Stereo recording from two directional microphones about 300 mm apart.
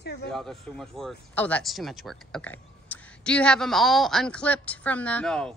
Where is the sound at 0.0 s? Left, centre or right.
Left.